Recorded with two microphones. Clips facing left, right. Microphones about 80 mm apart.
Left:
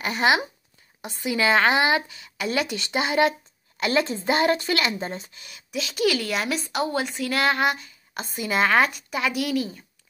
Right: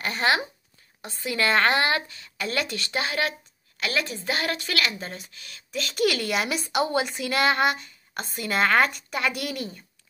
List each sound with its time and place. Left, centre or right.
0.0 s a woman's voice: centre
5.7 s a woman's voice: centre